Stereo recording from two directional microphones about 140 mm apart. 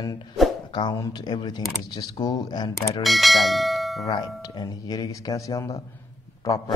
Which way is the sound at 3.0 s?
Centre (ahead or behind).